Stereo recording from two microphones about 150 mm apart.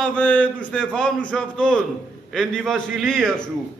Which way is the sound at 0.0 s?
10° left (ahead or behind).